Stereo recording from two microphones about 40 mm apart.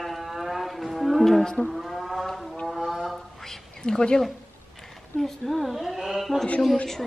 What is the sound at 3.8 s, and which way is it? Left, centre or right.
Speech, centre.